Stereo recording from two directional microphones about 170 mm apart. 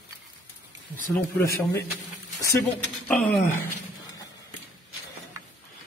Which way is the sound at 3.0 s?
5° left (ahead or behind).